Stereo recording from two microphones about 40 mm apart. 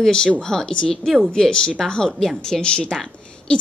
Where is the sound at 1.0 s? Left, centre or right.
Centre.